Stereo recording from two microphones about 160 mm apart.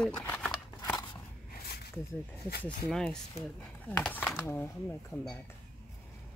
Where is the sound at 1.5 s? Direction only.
80° left.